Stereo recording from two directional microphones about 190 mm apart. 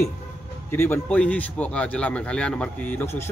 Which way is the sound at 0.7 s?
10° left (ahead or behind).